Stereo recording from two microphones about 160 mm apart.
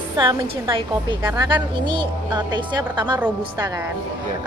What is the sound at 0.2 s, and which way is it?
Speech, 25° right (ahead or behind).